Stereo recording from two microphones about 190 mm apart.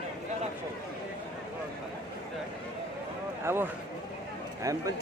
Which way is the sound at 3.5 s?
10° right (ahead or behind).